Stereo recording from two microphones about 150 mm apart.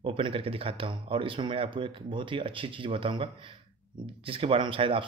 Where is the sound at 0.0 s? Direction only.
40° right (ahead or behind).